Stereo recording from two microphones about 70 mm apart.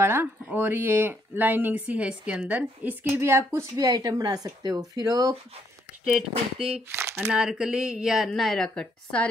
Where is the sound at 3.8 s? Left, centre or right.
Right.